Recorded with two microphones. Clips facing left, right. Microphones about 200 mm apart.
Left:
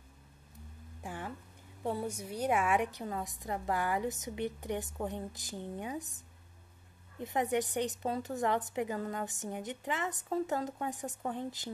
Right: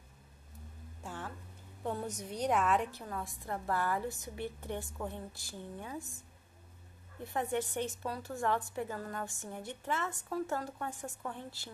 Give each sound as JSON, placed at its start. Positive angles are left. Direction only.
{"t": 1.0, "sound": "music", "side_deg": 15}
{"t": 1.8, "sound": "a woman's voice", "side_deg": 10}